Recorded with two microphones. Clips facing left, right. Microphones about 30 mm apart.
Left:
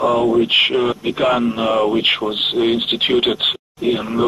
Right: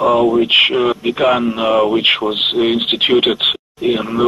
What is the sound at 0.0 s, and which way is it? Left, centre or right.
Speech, centre.